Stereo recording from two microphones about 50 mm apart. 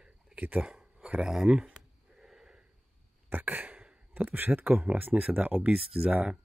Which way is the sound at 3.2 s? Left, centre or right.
Right.